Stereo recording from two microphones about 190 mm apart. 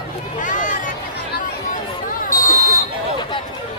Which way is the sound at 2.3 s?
15° left (ahead or behind).